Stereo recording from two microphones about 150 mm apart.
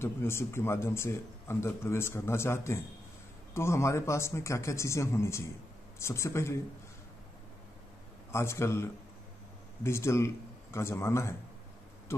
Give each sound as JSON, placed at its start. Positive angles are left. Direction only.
{"t": 0.0, "sound": "speech", "side_deg": 15}
{"t": 8.3, "sound": "speech", "side_deg": 15}